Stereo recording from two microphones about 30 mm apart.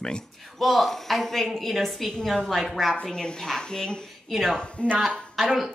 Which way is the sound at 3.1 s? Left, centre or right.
Left.